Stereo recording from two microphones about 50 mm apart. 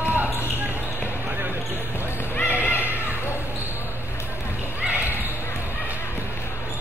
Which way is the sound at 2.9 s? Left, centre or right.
Right.